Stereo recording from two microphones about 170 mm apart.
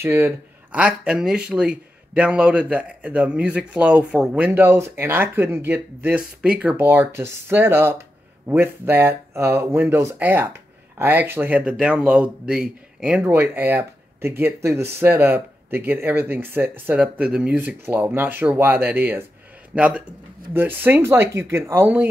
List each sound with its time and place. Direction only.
0.0 s speech: 15° right (ahead or behind)